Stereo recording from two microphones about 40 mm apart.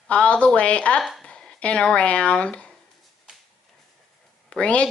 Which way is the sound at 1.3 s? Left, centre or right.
Left.